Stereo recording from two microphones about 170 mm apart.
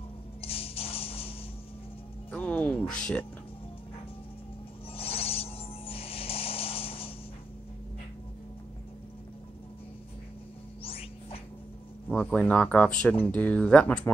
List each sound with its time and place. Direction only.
0.4 s music: 35° left (ahead or behind)
2.3 s music: 10° left (ahead or behind)
4.9 s music: 35° left (ahead or behind)
10.8 s music: 35° left (ahead or behind)
12.1 s speech: 5° left (ahead or behind)